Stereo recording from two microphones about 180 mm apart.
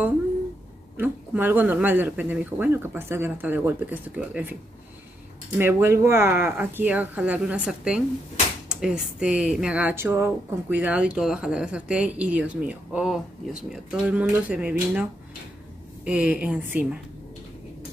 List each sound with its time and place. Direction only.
0.9 s speech: 10° right (ahead or behind)
5.6 s speech: 15° right (ahead or behind)
16.1 s speech: 5° right (ahead or behind)